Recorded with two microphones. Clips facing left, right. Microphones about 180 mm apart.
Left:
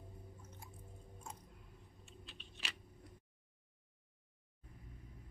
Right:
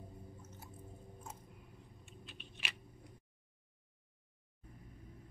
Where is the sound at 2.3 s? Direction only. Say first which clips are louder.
Right 2 dB; 15° right (ahead or behind).